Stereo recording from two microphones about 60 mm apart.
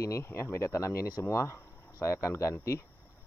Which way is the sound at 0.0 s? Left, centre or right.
Left.